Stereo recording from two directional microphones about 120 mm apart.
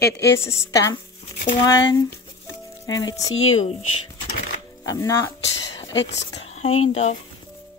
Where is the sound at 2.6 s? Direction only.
30° left (ahead or behind).